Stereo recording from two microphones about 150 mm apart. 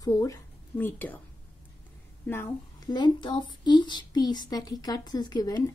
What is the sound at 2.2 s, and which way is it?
Speech, 15° left (ahead or behind).